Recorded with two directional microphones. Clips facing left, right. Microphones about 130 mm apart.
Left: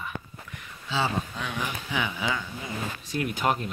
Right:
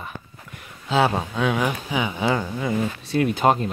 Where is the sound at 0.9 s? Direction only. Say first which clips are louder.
Right 8 dB; 70° right (ahead or behind).